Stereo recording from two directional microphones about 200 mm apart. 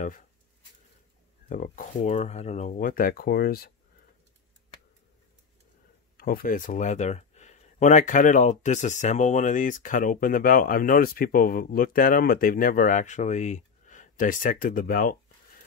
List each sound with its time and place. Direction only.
1.5 s speech: 40° left (ahead or behind)
6.1 s speech: 45° left (ahead or behind)